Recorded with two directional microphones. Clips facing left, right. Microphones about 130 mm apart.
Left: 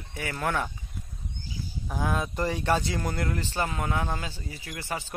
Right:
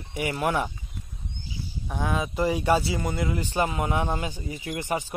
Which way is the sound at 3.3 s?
15° right (ahead or behind).